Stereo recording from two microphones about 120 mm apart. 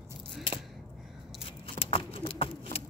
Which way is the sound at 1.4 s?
50° left (ahead or behind).